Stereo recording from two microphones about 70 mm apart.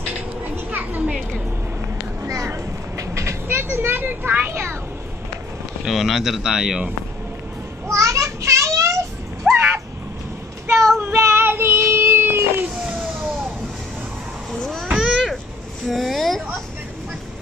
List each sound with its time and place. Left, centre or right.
0.7 s children playing: right
2.2 s vehicle: right
5.9 s speech: centre
7.9 s children playing: right
9.5 s a sound: centre
11.0 s child singing: right
14.6 s a sound: centre